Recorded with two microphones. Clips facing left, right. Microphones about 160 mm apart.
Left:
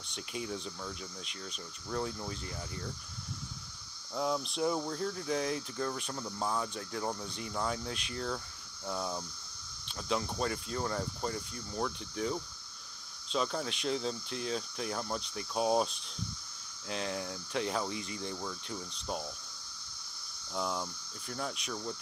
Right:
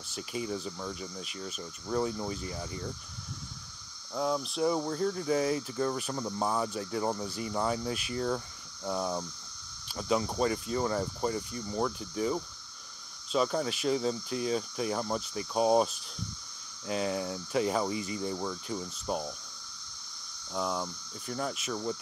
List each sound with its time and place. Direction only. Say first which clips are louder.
0.1 s speech: right 4 dB; centre (ahead or behind)
4.1 s speech: right 2 dB; centre (ahead or behind)
18.3 s speech: right 5 dB; 20° right (ahead or behind)
18.9 s speech: right 5 dB; 5° right (ahead or behind)
20.5 s speech: right 3 dB; centre (ahead or behind)